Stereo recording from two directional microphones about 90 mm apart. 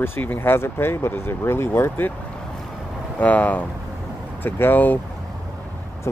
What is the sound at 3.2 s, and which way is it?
Speech, 15° left (ahead or behind).